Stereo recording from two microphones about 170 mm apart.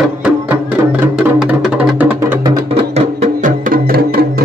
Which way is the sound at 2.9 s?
45° right (ahead or behind).